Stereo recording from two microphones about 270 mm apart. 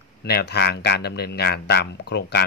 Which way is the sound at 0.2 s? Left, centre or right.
Left.